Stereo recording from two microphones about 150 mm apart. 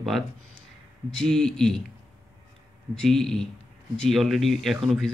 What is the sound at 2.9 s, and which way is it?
Speech, 5° left (ahead or behind).